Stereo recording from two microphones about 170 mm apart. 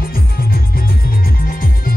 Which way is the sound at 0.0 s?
60° left (ahead or behind).